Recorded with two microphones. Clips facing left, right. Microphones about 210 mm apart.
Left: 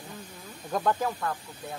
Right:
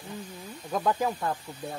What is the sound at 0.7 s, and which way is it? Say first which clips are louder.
Speech: even; 5° right (ahead or behind).